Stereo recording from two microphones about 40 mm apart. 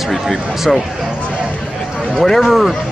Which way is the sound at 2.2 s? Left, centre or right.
Centre.